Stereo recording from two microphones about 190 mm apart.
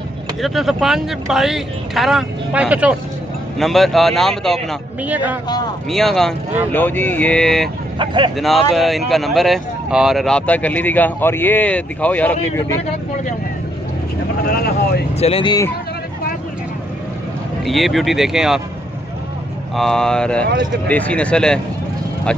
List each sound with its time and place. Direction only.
0.4 s speech: centre (ahead or behind)
5.0 s a man's voice: 10° right (ahead or behind)
5.9 s speech: centre (ahead or behind)
8.0 s speech: 25° right (ahead or behind)
8.4 s speech: centre (ahead or behind)
14.6 s speech: 55° left (ahead or behind)
15.1 s speech: 30° left (ahead or behind)
17.6 s speech: centre (ahead or behind)
19.7 s speech: centre (ahead or behind)